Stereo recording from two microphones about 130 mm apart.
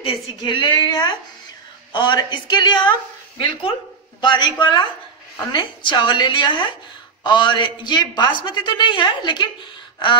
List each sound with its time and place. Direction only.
0.0 s a woman's voice: 40° left (ahead or behind)